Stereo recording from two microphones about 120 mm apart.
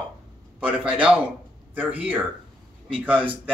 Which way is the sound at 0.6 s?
10° right (ahead or behind).